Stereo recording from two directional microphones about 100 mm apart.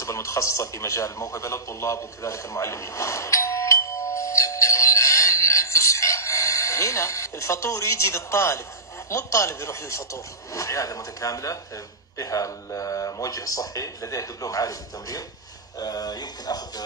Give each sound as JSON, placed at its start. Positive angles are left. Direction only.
{"t": 0.0, "sound": "radio", "side_deg": 30}
{"t": 9.1, "sound": "speech", "side_deg": 30}